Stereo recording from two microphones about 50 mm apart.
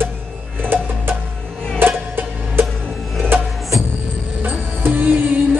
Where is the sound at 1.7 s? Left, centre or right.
Right.